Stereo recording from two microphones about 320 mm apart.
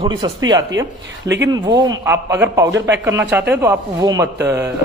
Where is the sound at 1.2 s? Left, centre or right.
Right.